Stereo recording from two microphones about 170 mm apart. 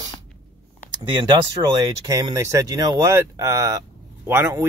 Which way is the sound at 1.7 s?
20° right (ahead or behind).